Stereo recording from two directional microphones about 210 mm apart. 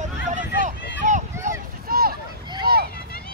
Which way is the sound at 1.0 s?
35° right (ahead or behind).